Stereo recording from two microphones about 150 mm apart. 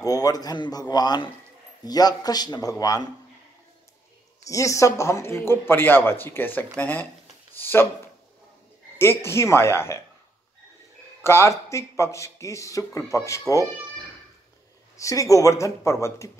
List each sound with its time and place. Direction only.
0.0 s speech: 25° left (ahead or behind)
4.5 s speech: 20° left (ahead or behind)
8.9 s speech: 15° left (ahead or behind)
11.2 s speech: 20° left (ahead or behind)
15.0 s speech: 20° left (ahead or behind)